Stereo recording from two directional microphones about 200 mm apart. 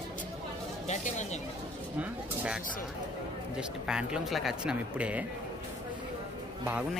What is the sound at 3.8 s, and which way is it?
A man's voice, 5° right (ahead or behind).